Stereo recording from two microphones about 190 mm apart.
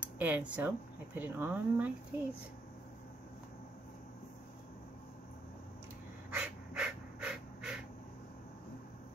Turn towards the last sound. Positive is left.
turn(degrees=-5)  # may be behind; listen again after turning